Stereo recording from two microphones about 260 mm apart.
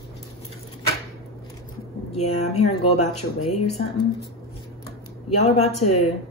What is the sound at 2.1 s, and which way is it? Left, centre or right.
Speech, left.